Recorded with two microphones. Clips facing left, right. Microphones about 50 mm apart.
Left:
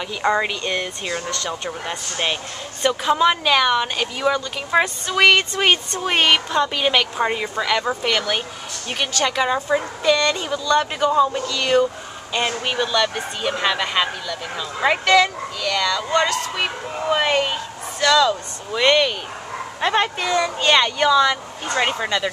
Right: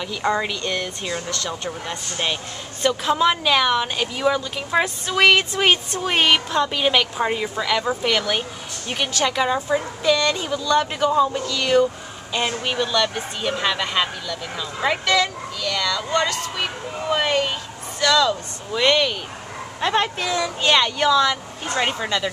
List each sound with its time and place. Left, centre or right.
0.0 s a woman's voice: centre